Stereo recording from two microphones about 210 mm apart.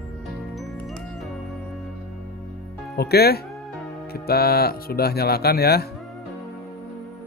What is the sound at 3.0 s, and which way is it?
Music, 50° left (ahead or behind).